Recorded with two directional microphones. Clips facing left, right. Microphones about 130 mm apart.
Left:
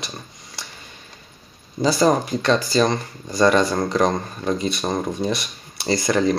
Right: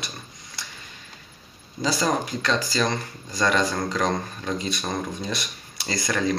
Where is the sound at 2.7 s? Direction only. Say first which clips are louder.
Left 6 dB; 25° left (ahead or behind).